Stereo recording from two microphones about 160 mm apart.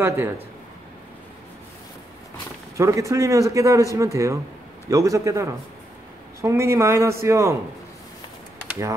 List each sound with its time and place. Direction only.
0.0 s speech: 15° right (ahead or behind)
2.8 s a man's voice: 20° right (ahead or behind)